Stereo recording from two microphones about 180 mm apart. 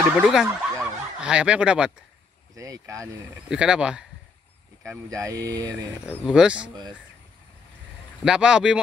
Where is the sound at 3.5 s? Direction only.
5° right (ahead or behind).